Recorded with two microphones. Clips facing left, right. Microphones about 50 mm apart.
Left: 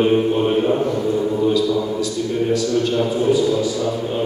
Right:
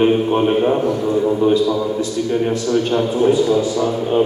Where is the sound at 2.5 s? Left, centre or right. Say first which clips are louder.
Right 1 dB; right.